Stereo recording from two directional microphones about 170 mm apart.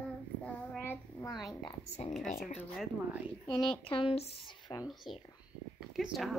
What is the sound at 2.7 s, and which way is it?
Speech, centre (ahead or behind).